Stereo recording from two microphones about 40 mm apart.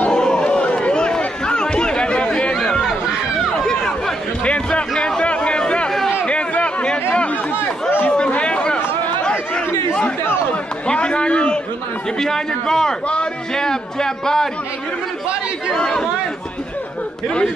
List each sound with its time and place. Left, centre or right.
0.1 s chatter: centre
2.5 s chatter: centre
3.3 s run: centre
4.5 s music: left
4.9 s a sound: centre
6.2 s chatter: left
8.3 s chatter: left
10.5 s a sound: left
12.2 s a man's voice: centre
15.7 s a man's voice: centre